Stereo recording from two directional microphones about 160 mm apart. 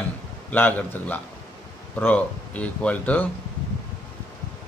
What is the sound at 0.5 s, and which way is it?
Speech, 10° left (ahead or behind).